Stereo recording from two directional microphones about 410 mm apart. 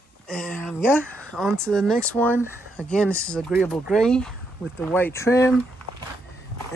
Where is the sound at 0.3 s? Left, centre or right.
Centre.